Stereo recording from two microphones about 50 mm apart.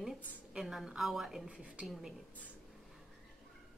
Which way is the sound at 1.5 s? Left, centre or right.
Right.